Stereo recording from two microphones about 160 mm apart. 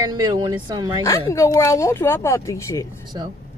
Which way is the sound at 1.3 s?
20° left (ahead or behind).